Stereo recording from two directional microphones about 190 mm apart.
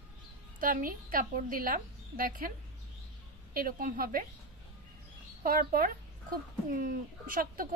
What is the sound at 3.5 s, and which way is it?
Speech, 50° right (ahead or behind).